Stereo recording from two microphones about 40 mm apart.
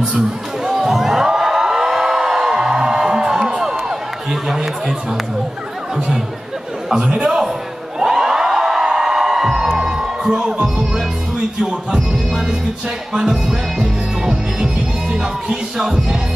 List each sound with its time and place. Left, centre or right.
0.7 s a sound: centre
4.3 s chatter: centre
6.9 s a man's voice: centre
8.0 s music: centre
11.3 s speech: centre
13.1 s music: centre